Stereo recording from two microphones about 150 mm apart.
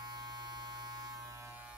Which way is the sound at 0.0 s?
25° right (ahead or behind).